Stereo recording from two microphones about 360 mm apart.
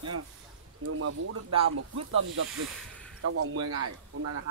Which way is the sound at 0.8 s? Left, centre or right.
Right.